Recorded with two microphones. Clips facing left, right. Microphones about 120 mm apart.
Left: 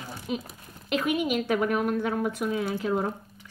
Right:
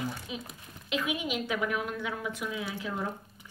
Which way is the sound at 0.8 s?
55° left (ahead or behind).